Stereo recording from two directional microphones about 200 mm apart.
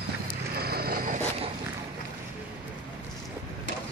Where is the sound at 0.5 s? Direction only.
50° right (ahead or behind).